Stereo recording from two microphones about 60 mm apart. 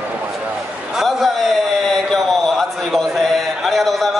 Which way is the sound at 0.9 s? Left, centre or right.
Centre.